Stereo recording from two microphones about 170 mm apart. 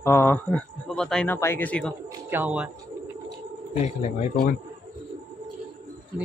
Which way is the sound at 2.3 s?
10° right (ahead or behind).